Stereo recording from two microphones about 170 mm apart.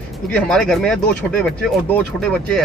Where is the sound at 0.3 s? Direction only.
5° left (ahead or behind).